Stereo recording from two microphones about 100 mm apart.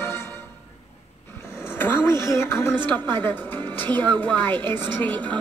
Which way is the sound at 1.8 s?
20° left (ahead or behind).